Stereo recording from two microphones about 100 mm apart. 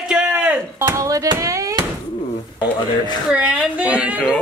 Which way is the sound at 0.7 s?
30° right (ahead or behind).